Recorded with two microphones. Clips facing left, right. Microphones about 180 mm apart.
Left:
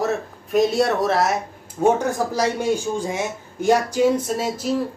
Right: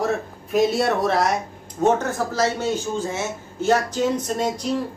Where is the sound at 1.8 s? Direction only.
15° left (ahead or behind).